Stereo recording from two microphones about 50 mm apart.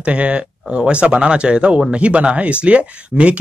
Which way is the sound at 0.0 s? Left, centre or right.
Right.